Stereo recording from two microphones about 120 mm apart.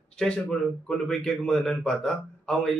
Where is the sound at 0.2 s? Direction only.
5° left (ahead or behind).